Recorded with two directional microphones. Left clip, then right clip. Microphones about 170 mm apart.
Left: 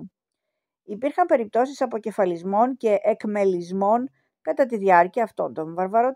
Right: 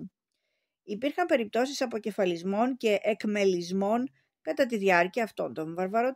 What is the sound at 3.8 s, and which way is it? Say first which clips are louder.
Speech: left 9 dB; 20° right (ahead or behind).